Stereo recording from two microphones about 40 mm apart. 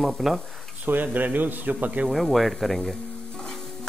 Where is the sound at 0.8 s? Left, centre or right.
Right.